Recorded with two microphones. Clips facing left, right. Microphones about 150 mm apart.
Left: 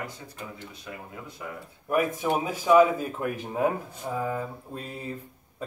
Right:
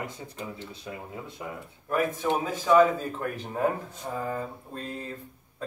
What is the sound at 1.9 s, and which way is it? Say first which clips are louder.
Speech: left 1 dB; 15° left (ahead or behind).